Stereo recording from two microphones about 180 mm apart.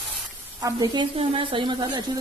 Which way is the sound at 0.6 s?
20° right (ahead or behind).